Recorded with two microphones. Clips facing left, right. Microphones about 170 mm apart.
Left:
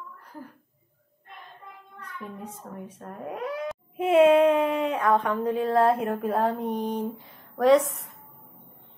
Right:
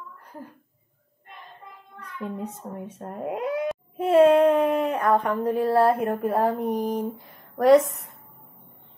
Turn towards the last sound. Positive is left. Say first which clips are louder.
# right 3 dB
turn(degrees=-5)  # may be behind; listen again after turning